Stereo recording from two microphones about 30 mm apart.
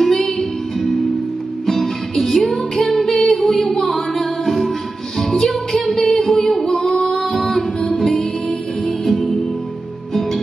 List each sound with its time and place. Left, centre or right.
0.0 s music: centre